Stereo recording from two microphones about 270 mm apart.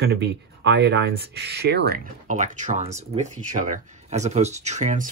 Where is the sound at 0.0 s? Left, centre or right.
Right.